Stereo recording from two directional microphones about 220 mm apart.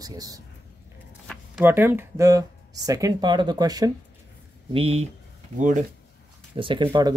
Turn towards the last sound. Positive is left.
turn(degrees=-20)  # may be behind; listen again after turning